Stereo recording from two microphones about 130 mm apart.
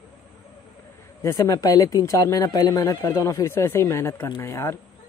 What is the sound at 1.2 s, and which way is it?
Speech, 25° left (ahead or behind).